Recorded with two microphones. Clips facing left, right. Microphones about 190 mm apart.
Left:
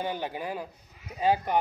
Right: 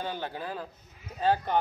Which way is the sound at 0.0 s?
15° left (ahead or behind).